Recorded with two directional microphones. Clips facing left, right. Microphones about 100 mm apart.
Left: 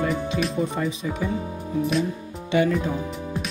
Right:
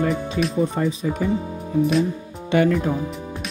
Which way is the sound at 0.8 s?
40° right (ahead or behind).